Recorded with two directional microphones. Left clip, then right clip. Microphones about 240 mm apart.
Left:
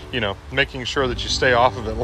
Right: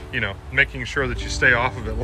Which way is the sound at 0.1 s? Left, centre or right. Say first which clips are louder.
Even; centre.